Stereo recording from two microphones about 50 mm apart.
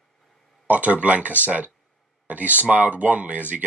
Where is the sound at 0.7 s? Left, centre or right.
Right.